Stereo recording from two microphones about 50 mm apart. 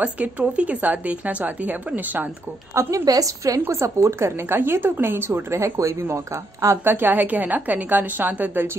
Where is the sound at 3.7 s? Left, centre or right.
Right.